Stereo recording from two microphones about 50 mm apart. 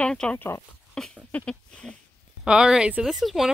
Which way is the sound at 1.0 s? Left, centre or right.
Centre.